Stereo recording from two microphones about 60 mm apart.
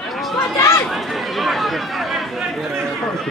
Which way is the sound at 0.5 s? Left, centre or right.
Left.